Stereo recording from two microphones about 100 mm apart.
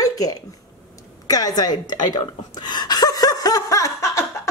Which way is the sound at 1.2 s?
40° left (ahead or behind).